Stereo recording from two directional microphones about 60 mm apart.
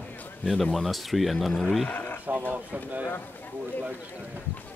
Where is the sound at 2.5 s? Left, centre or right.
Right.